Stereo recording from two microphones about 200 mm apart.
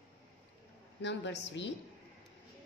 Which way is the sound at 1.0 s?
60° left (ahead or behind).